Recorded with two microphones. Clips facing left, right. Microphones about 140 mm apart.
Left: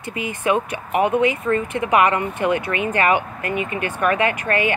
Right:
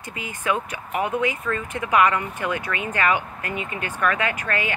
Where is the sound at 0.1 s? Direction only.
20° left (ahead or behind).